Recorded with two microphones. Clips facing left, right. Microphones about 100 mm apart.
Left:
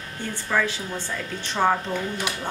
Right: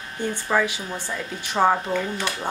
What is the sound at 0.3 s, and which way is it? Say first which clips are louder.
A woman's voice: right 2 dB; 15° right (ahead or behind).